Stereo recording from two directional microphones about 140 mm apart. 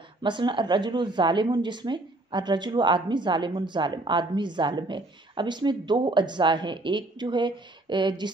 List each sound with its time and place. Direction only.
0.2 s a woman's voice: 35° right (ahead or behind)